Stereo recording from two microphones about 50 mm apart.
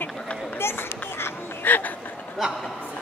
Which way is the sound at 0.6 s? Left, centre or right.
Left.